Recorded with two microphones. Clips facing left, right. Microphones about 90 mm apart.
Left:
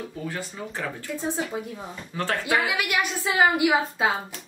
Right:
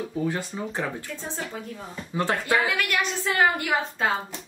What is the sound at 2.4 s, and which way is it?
A woman's voice, 15° left (ahead or behind).